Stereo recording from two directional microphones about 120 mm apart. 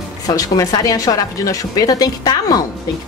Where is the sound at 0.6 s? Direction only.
30° left (ahead or behind).